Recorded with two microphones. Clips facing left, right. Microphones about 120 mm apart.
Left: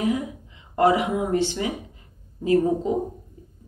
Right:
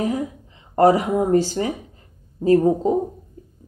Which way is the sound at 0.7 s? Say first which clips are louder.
Right 4 dB; 35° right (ahead or behind).